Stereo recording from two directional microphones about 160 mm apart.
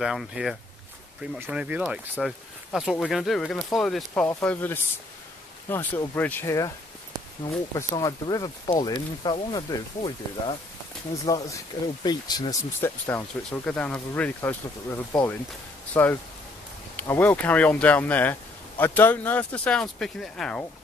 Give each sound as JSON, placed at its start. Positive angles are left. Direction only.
{"t": 0.0, "sound": "speech", "side_deg": 0}
{"t": 7.9, "sound": "speech", "side_deg": 25}
{"t": 13.0, "sound": "speech", "side_deg": 5}